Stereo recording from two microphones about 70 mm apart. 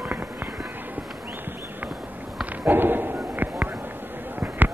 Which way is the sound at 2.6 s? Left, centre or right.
Right.